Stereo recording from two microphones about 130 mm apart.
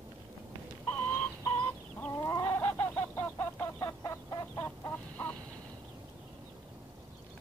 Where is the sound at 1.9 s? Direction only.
20° left (ahead or behind).